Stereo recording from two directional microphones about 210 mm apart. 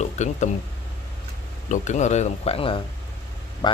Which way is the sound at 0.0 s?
35° left (ahead or behind).